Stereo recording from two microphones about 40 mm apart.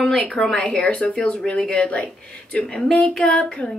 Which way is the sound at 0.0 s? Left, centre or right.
Centre.